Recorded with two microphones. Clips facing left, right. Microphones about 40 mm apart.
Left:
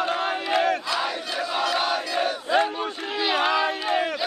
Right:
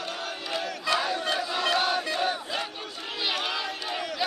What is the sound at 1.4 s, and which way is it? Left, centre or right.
Battle cry, centre.